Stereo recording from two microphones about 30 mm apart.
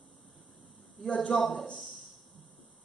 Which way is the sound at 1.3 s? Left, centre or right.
Centre.